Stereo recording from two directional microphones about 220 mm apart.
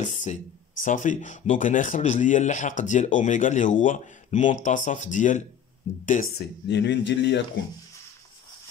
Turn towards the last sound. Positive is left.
turn(degrees=55)  # may be behind; listen again after turning